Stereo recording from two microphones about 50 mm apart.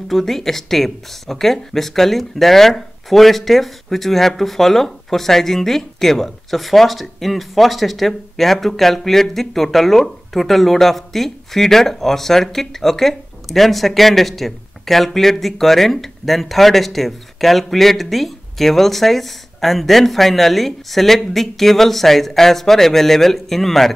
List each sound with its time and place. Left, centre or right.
0.1 s speech: centre